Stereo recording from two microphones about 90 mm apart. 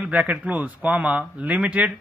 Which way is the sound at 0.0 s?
15° right (ahead or behind).